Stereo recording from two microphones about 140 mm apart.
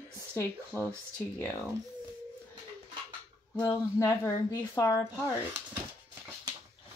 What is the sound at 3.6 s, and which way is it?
A woman's voice, 20° left (ahead or behind).